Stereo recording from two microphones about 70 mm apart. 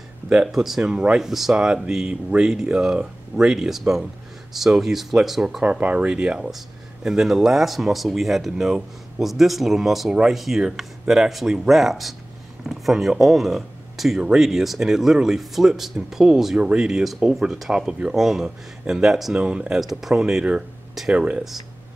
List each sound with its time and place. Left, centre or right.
0.3 s speech: centre
5.6 s speech: centre
16.5 s speech: centre
19.3 s speech: centre
19.8 s speech: centre